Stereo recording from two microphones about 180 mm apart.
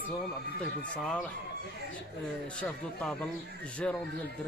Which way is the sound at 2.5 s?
5° left (ahead or behind).